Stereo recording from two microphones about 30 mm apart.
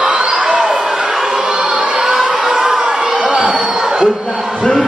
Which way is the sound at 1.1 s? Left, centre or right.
Centre.